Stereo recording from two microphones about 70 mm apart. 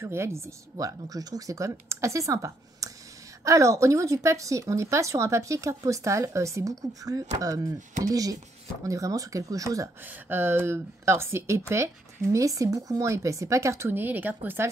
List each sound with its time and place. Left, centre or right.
0.0 s speech: right
0.7 s a woman's voice: right
10.0 s a woman's voice: right